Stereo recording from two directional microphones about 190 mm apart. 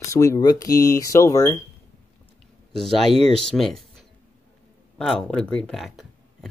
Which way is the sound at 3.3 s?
Centre (ahead or behind).